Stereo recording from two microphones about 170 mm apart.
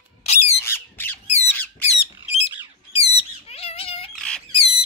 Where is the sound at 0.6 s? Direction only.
15° left (ahead or behind).